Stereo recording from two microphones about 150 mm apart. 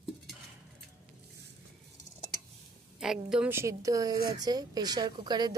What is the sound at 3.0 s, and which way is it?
Speech, 5° right (ahead or behind).